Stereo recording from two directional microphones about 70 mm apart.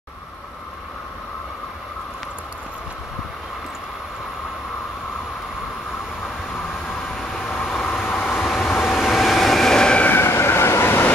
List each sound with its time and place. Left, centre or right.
7.2 s vehicle: centre
8.2 s train: centre
10.0 s train: left